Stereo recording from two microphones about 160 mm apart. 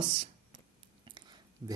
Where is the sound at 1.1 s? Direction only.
30° right (ahead or behind).